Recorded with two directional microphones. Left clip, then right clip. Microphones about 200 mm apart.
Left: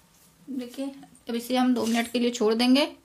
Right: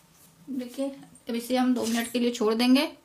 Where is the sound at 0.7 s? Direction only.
20° left (ahead or behind).